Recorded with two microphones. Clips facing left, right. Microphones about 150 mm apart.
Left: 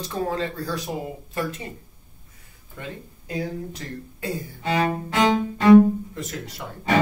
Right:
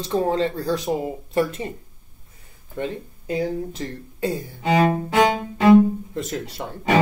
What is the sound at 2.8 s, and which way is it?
Speech, 25° right (ahead or behind).